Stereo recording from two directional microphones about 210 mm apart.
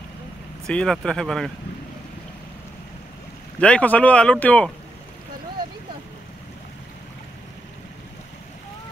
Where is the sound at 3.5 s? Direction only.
5° left (ahead or behind).